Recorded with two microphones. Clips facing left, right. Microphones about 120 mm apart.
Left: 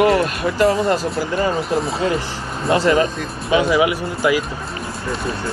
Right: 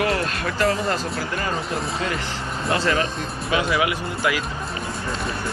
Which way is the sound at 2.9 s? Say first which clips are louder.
Left 6 dB; 30° left (ahead or behind).